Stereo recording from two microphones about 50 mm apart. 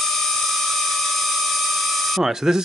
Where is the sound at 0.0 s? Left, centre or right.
Centre.